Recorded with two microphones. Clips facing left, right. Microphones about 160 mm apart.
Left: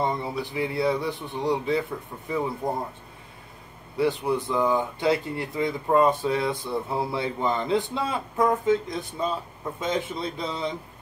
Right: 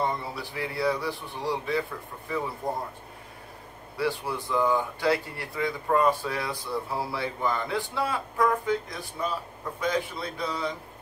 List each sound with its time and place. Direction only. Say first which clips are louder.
0.0 s speech: left 3 dB; 20° left (ahead or behind)
3.9 s speech: left 5 dB; 20° left (ahead or behind)